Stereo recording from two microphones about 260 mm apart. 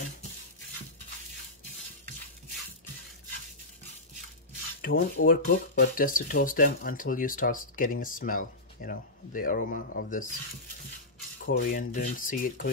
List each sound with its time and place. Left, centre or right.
4.8 s speech: left
11.4 s speech: left